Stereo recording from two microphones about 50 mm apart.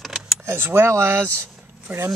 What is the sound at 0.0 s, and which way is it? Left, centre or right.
Vehicle, centre.